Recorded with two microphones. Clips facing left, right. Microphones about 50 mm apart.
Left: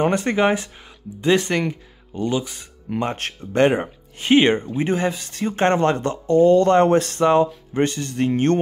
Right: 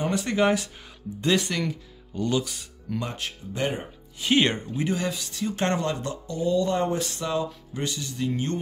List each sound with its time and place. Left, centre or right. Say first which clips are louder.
0.0 s speech: left 5 dB; left
3.1 s speech: left 7 dB; left
4.2 s speech: left 7 dB; left
4.6 s speech: left 6 dB; left